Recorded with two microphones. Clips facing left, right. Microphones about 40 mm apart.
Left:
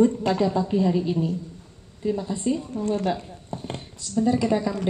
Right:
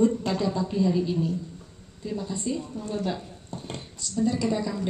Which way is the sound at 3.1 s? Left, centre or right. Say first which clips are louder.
Left 5 dB; left.